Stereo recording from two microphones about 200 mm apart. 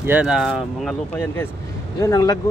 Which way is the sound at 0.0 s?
5° right (ahead or behind).